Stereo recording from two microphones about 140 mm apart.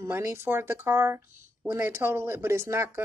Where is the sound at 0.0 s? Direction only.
15° right (ahead or behind).